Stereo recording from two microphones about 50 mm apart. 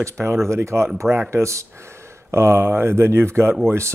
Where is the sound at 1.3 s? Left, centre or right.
Right.